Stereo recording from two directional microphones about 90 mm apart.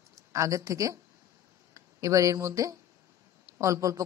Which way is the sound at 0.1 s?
35° right (ahead or behind).